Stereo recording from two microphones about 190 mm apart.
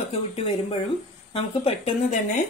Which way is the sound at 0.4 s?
30° left (ahead or behind).